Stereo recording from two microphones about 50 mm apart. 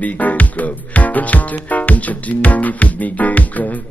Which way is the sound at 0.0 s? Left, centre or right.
Left.